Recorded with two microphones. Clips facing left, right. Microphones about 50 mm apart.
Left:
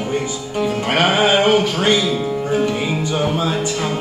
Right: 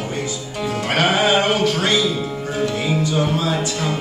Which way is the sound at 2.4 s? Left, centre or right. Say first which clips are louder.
Left 1 dB; left.